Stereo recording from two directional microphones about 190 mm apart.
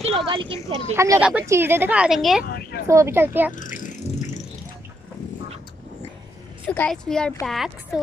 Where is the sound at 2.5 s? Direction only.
55° left (ahead or behind).